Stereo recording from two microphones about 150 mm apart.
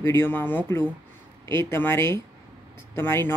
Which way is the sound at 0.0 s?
15° left (ahead or behind).